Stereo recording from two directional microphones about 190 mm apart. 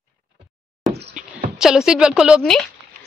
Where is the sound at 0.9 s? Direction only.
60° right (ahead or behind).